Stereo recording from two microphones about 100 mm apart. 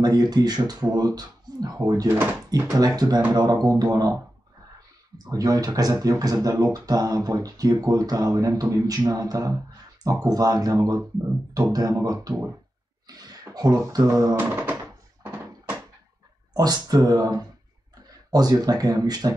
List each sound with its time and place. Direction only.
0.0 s speech: 40° right (ahead or behind)
5.1 s speech: 40° right (ahead or behind)
14.3 s speech: 20° right (ahead or behind)
15.2 s a sound: 20° right (ahead or behind)
16.5 s speech: 40° right (ahead or behind)